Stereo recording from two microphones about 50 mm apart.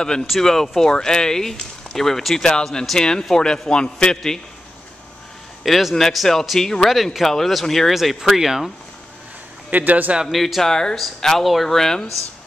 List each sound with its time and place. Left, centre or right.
0.0 s speech: centre
5.6 s speech: centre
6.9 s speech: centre
9.7 s a man's voice: right
10.2 s speech: centre